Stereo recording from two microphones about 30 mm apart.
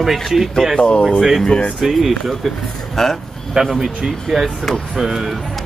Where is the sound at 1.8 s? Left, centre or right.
Centre.